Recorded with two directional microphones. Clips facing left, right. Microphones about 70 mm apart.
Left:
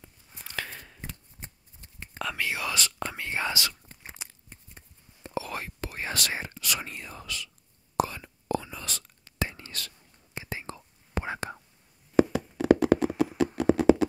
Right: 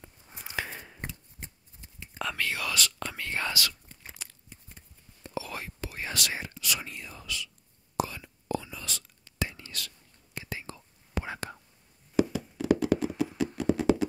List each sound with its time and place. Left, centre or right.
0.3 s a sound: centre
1.4 s shuffling cards: left
2.3 s speech: centre
4.2 s tearing: centre
5.2 s whispering: left
6.6 s speech: left
8.0 s whispering: left
10.3 s whispering: left
12.3 s hands: left
13.6 s a sound: left